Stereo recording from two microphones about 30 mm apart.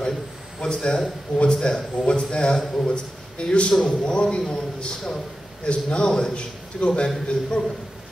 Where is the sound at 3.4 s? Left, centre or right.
Left.